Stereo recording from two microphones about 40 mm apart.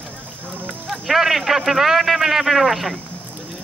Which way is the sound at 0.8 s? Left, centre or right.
Centre.